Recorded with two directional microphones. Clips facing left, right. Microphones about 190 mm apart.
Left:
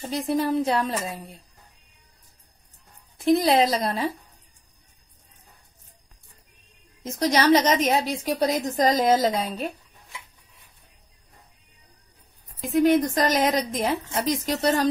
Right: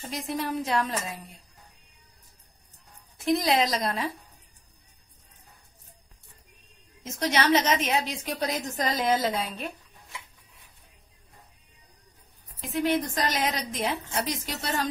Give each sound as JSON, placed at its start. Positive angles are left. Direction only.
{"t": 0.1, "sound": "a woman's voice", "side_deg": 30}
{"t": 3.3, "sound": "a woman's voice", "side_deg": 35}
{"t": 7.1, "sound": "a woman's voice", "side_deg": 40}
{"t": 12.5, "sound": "a woman's voice", "side_deg": 40}